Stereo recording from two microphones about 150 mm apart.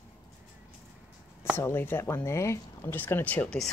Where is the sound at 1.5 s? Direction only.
15° left (ahead or behind).